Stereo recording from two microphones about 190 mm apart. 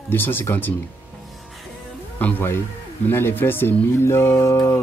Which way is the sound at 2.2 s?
10° left (ahead or behind).